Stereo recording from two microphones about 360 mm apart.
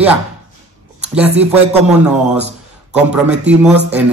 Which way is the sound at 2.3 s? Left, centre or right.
Centre.